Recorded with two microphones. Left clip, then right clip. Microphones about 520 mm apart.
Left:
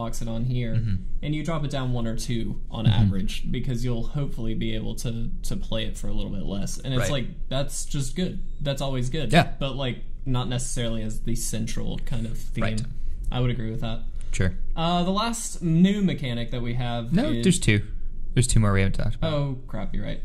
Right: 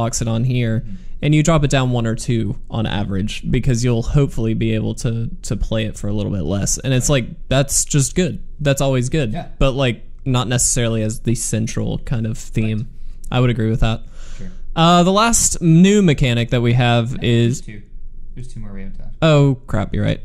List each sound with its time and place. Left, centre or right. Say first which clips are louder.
0.0 s speech: right 11 dB; right
17.7 s speech: left 15 dB; left
19.1 s speech: right 16 dB; right